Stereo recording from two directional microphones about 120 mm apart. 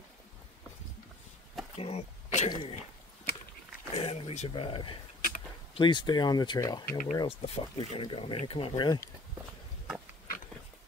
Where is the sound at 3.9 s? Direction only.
55° left (ahead or behind).